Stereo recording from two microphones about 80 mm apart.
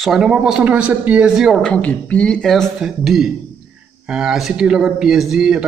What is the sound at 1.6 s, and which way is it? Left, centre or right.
Speech, centre.